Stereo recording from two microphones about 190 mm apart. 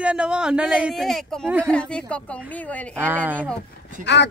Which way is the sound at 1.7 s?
5° left (ahead or behind).